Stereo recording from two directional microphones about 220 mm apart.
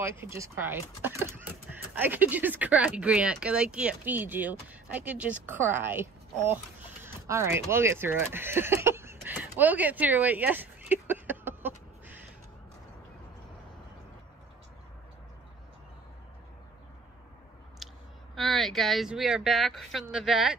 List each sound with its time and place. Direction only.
0.0 s speech: 10° right (ahead or behind)
17.8 s clicking: centre (ahead or behind)
18.3 s speech: centre (ahead or behind)